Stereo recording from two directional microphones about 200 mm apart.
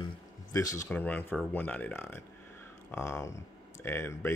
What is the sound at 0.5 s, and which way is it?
Speech, 15° left (ahead or behind).